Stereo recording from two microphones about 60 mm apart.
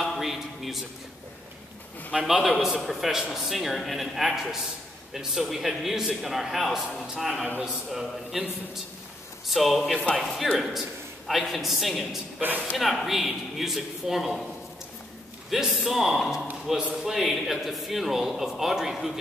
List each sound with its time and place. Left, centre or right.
0.0 s a sound: centre
2.2 s a man's voice: centre
9.5 s a man's voice: centre
12.4 s speech: right
12.7 s a man's voice: centre
15.5 s a man's voice: centre